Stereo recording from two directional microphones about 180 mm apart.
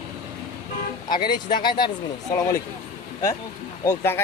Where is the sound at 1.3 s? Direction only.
25° left (ahead or behind).